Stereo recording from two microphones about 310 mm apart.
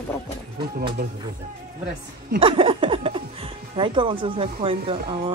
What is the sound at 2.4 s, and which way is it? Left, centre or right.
A woman's voice, centre.